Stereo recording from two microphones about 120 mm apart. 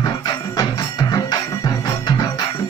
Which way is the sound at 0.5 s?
30° left (ahead or behind).